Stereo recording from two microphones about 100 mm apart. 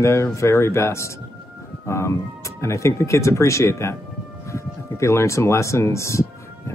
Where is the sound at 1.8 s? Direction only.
25° left (ahead or behind).